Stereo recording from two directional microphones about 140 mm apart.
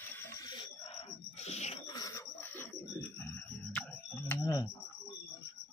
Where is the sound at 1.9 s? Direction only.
25° left (ahead or behind).